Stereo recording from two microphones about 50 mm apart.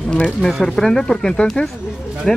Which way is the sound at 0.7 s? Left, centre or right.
Centre.